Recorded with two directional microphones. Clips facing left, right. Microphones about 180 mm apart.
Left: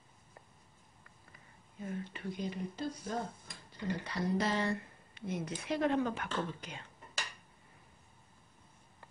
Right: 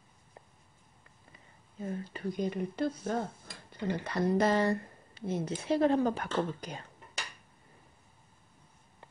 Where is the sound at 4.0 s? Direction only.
50° right (ahead or behind).